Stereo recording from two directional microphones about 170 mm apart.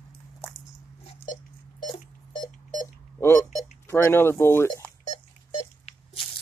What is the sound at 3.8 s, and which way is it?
Speech, 15° left (ahead or behind).